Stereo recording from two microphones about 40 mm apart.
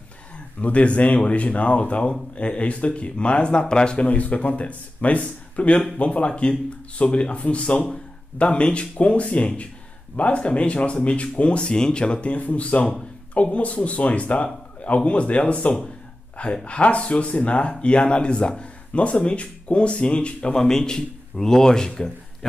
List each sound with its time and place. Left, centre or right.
0.6 s speech: left
4.0 s speech: left
20.5 s a man's voice: centre